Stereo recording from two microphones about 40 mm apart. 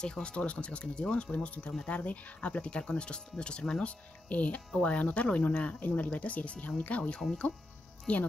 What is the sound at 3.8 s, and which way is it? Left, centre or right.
Speech, left.